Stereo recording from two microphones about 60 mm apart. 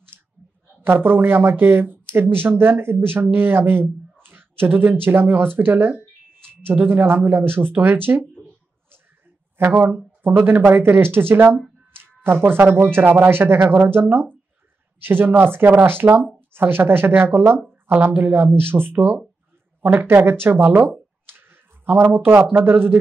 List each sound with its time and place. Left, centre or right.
0.8 s speech: right
5.6 s a sound: right
6.8 s speech: right
9.6 s speech: right